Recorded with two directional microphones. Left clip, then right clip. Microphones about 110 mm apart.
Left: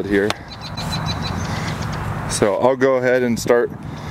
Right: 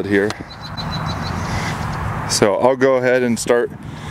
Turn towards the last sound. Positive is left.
turn(degrees=-10)  # may be behind; listen again after turning